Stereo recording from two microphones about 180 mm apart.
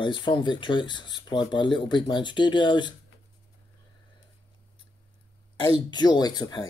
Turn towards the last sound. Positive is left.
turn(degrees=20)  # may be behind; listen again after turning